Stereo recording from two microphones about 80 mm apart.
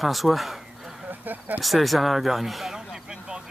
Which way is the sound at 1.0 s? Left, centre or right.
Right.